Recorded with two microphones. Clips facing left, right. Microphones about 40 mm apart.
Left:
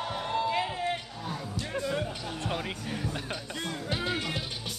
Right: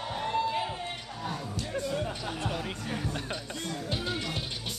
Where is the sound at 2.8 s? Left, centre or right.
Centre.